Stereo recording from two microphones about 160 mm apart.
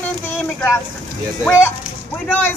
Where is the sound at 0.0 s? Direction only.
15° left (ahead or behind).